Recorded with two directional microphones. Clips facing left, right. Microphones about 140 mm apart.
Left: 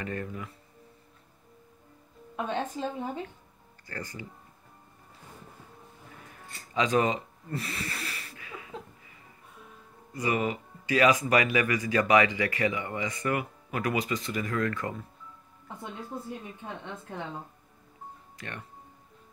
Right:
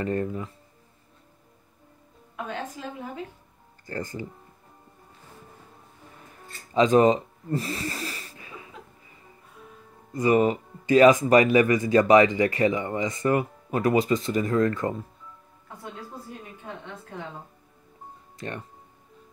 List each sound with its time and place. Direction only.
0.0 s speech: 35° right (ahead or behind)
2.3 s a woman's voice: 25° left (ahead or behind)
4.0 s speech: 45° right (ahead or behind)
6.7 s speech: 25° right (ahead or behind)
8.2 s a sound: 30° right (ahead or behind)
10.2 s speech: 35° right (ahead or behind)
11.1 s speech: 45° right (ahead or behind)
11.3 s speech: 30° right (ahead or behind)